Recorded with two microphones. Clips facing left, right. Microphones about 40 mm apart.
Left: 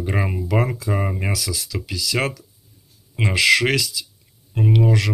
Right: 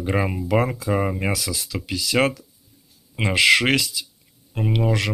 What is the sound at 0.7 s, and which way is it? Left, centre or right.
Speech, right.